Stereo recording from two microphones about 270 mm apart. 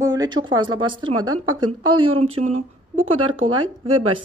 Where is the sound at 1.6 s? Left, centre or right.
Centre.